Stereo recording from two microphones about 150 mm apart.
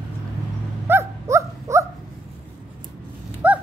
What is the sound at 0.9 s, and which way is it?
Dog, 20° right (ahead or behind).